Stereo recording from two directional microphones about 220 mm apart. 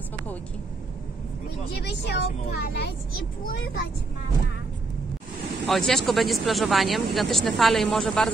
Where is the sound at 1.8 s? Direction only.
50° left (ahead or behind).